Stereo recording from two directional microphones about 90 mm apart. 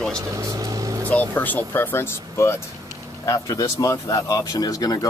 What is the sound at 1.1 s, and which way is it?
Speech, 20° left (ahead or behind).